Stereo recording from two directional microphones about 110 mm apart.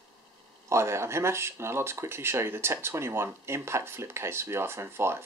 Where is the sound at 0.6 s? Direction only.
25° right (ahead or behind).